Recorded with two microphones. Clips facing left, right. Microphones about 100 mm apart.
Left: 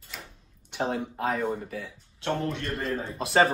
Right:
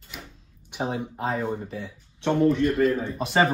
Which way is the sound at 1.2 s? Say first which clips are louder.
Right 1 dB; 30° right (ahead or behind).